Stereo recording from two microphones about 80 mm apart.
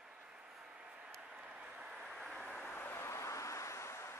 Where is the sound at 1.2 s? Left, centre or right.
Centre.